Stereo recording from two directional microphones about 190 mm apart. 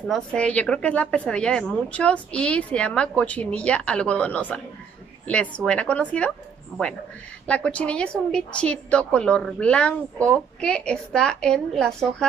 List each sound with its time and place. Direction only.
0.1 s a woman's voice: 5° left (ahead or behind)
7.4 s a woman's voice: 5° left (ahead or behind)